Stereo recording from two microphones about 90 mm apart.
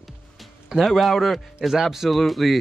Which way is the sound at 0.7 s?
5° right (ahead or behind).